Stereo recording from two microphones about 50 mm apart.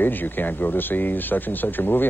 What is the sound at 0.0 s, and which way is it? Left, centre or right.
Speech, left.